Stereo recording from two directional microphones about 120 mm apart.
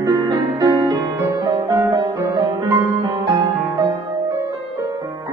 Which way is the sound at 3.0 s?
35° right (ahead or behind).